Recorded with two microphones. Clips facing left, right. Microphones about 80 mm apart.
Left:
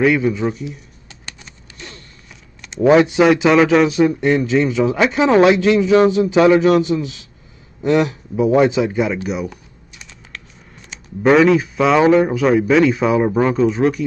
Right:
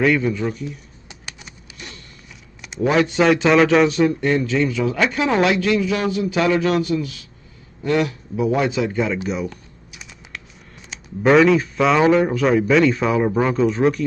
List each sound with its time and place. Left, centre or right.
0.0 s speech: centre
1.0 s bird: centre
2.8 s speech: left
3.2 s speech: centre
4.2 s speech: centre
10.9 s speech: centre